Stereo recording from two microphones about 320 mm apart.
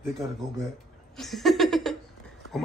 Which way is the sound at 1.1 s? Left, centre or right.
Centre.